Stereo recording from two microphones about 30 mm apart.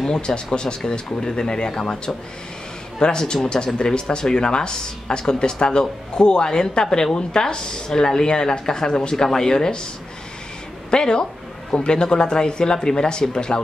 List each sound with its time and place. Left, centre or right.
0.0 s speech: left
10.9 s a woman's voice: left